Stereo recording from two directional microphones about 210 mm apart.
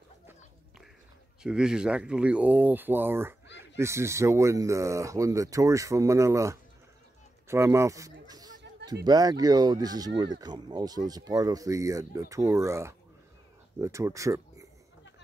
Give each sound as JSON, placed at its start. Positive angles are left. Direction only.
{"t": 1.4, "sound": "speech", "side_deg": -5}
{"t": 7.4, "sound": "a sound", "side_deg": -10}
{"t": 8.8, "sound": "speech", "side_deg": -20}